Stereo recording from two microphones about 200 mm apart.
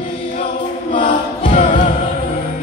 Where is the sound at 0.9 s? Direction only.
25° left (ahead or behind).